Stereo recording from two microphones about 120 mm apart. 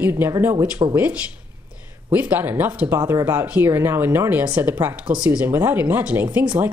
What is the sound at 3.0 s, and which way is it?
Speech, 30° right (ahead or behind).